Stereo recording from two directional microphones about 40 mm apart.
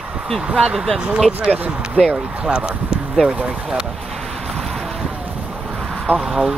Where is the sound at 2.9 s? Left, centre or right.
Right.